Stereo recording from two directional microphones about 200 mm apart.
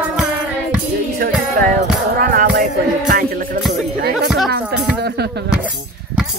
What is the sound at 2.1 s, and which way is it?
Music, 45° right (ahead or behind).